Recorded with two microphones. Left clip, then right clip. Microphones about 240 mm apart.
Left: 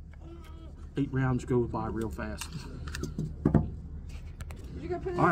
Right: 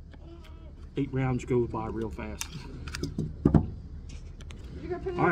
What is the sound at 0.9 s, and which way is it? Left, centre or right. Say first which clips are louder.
Speech: right 1 dB; centre.